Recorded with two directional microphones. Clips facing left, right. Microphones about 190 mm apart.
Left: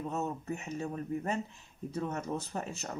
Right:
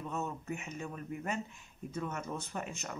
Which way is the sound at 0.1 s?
40° left (ahead or behind).